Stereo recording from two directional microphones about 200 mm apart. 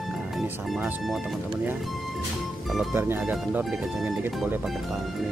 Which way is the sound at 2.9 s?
5° right (ahead or behind).